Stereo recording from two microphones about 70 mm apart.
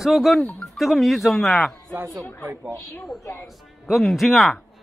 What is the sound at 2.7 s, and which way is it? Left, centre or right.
Speech, left.